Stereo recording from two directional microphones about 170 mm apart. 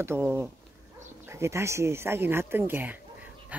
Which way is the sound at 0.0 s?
15° right (ahead or behind).